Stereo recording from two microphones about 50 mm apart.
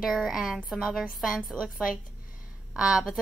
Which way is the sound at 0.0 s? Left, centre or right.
Centre.